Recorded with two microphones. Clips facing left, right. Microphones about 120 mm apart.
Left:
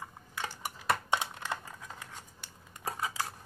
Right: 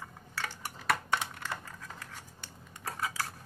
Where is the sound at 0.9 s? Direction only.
20° left (ahead or behind).